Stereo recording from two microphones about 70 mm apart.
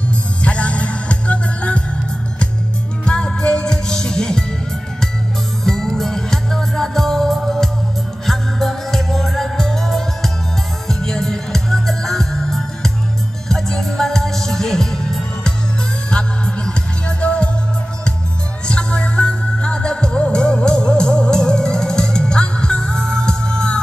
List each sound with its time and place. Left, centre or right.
0.4 s music: centre
3.1 s music: centre
5.6 s music: centre
18.7 s music: centre